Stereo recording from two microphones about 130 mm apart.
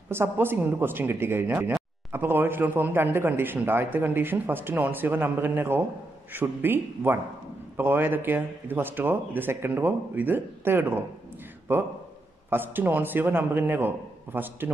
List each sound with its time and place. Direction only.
0.1 s speech: 15° right (ahead or behind)